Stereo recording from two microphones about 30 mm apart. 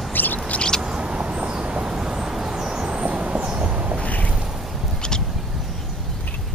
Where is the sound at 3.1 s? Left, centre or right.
Right.